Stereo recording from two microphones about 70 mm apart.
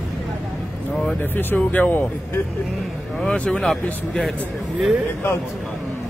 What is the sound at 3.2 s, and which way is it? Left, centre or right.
Speech, centre.